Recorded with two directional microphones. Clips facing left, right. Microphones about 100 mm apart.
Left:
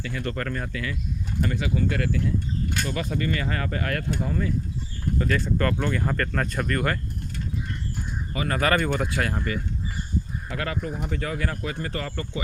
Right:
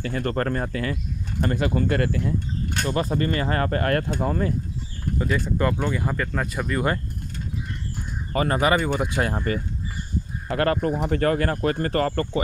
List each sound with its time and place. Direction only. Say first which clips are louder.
0.0 s speech: right 5 dB; 45° right (ahead or behind)
1.4 s speech: right 3 dB; 50° right (ahead or behind)
5.2 s speech: right 1 dB; 15° right (ahead or behind)
8.5 s speech: right 1 dB; 15° right (ahead or behind)
9.3 s speech: right 3 dB; 40° right (ahead or behind)
10.5 s speech: right 8 dB; 50° right (ahead or behind)